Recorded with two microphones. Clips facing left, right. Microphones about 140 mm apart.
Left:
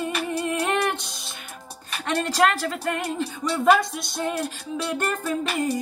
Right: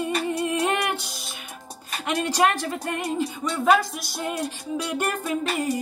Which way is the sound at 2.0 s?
15° right (ahead or behind).